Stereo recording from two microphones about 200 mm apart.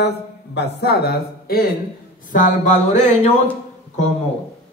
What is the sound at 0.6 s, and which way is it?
Speech, 55° left (ahead or behind).